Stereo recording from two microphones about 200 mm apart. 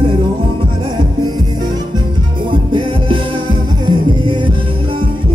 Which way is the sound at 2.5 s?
25° right (ahead or behind).